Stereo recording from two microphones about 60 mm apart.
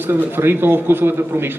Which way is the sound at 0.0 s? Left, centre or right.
Right.